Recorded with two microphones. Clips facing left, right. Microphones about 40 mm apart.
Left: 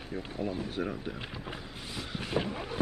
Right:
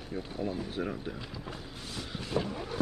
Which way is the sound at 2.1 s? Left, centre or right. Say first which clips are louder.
Left 1 dB; left.